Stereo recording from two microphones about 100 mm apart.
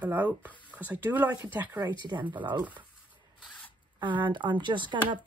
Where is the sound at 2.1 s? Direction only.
40° right (ahead or behind).